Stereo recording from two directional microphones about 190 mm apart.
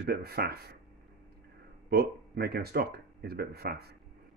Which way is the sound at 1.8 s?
55° right (ahead or behind).